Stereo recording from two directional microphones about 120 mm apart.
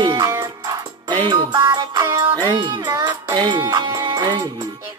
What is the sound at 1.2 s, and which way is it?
Speech, 40° right (ahead or behind).